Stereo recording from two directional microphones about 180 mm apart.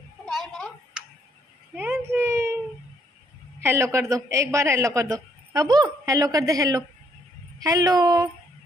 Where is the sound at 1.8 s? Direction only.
15° right (ahead or behind).